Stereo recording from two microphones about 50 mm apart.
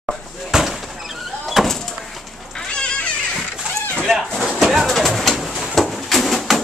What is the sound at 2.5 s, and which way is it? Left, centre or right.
Cat, centre.